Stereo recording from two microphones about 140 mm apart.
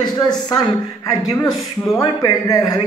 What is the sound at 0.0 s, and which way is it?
Speech, 30° left (ahead or behind).